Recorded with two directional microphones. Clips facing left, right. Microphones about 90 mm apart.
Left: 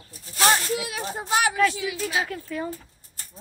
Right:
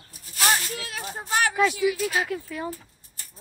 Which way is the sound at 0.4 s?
35° left (ahead or behind).